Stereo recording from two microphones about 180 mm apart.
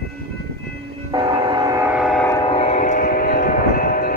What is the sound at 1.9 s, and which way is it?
Train, centre (ahead or behind).